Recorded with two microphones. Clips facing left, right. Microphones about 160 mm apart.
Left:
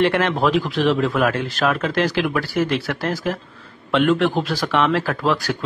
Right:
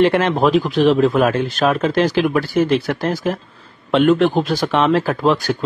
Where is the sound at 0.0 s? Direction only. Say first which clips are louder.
Right 4 dB; 20° right (ahead or behind).